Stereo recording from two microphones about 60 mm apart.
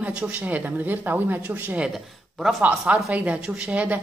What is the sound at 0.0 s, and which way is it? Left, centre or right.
Speech, right.